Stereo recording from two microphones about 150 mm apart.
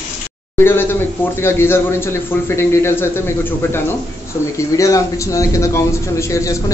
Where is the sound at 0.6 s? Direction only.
15° left (ahead or behind).